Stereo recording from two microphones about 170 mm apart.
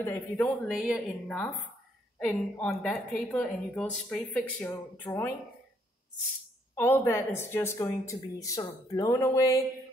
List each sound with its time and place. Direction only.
0.0 s speech: 10° left (ahead or behind)
0.7 s a woman's voice: 5° right (ahead or behind)
1.2 s a woman's voice: 10° left (ahead or behind)
6.7 s speech: 15° left (ahead or behind)